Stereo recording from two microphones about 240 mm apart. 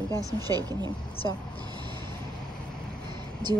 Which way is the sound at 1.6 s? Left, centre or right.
Centre.